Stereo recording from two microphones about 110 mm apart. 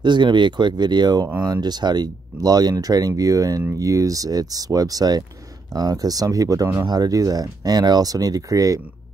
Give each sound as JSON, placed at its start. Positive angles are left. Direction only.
{"t": 0.0, "sound": "speech", "side_deg": -45}